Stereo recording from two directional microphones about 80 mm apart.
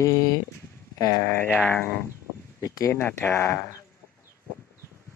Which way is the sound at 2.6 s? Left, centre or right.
Left.